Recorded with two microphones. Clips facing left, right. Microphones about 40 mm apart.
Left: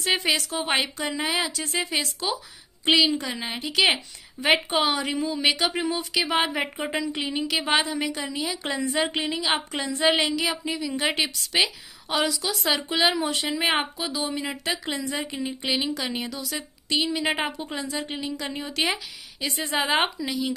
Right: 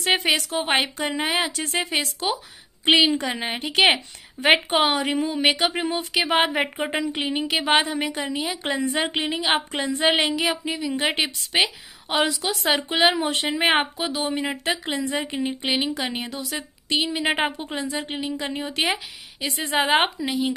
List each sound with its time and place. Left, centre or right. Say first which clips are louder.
0.0 s speech: right 3 dB; right
10.6 s speech: right 2 dB; right
19.4 s speech: right 3 dB; right